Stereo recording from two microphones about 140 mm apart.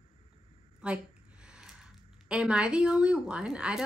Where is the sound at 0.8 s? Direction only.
10° right (ahead or behind).